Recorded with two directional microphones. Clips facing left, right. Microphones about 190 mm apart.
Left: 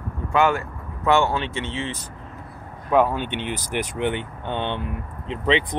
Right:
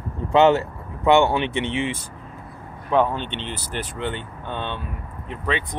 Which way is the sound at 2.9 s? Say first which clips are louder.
Left 1 dB; 5° left (ahead or behind).